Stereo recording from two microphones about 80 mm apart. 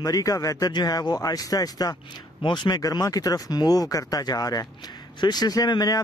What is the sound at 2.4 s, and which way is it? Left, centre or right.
Speech, left.